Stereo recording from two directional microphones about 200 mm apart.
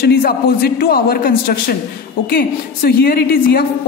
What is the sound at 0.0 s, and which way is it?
A woman's voice, 50° left (ahead or behind).